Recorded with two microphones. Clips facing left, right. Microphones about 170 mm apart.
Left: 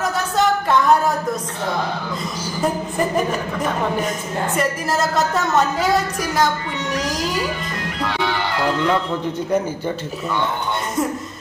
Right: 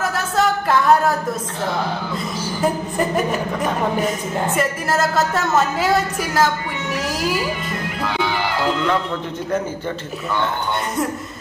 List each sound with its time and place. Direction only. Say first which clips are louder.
0.0 s a sound: even; centre (ahead or behind)
4.6 s a woman's voice: left 1 dB; centre (ahead or behind)
7.0 s a woman's voice: even; 5° right (ahead or behind)